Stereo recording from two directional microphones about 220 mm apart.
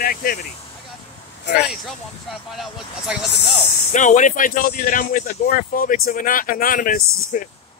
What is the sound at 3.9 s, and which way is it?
Speech, 35° left (ahead or behind).